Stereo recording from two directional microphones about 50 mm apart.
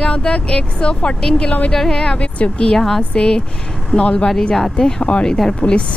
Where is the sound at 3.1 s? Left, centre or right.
Centre.